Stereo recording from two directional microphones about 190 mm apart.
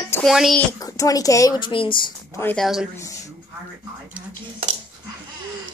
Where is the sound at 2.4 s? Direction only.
10° left (ahead or behind).